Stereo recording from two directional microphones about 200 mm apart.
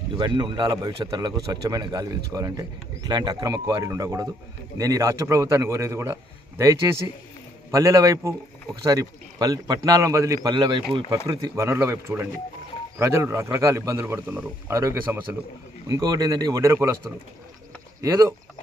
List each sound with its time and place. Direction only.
0.2 s a man's voice: 20° right (ahead or behind)
18.0 s a man's voice: 15° right (ahead or behind)